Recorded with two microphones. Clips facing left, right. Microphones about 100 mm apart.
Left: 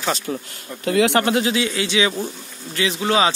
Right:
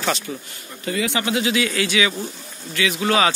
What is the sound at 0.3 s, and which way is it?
Speech, 60° left (ahead or behind).